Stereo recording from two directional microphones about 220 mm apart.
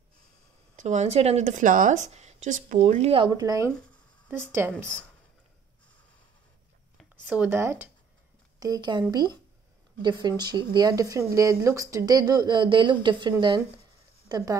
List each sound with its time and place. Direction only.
0.7 s speech: 30° right (ahead or behind); by 4.8 s 10° right (ahead or behind)
7.2 s speech: 10° right (ahead or behind)
10.0 s speech: 20° right (ahead or behind)